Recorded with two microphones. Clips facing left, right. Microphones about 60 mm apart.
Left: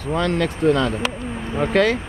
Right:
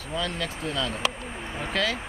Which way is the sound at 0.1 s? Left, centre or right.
Left.